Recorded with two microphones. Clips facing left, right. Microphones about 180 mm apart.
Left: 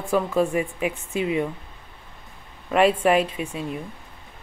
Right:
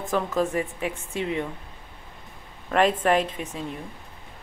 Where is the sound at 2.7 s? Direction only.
5° left (ahead or behind).